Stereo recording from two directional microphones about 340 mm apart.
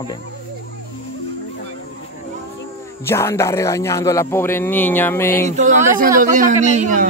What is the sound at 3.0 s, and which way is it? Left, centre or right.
Speech, centre.